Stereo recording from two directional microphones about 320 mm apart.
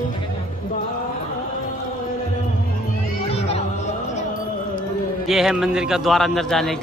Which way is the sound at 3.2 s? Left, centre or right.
Centre.